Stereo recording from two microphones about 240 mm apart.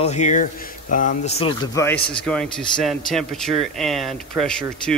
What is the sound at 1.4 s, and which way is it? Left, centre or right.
A man's voice, centre.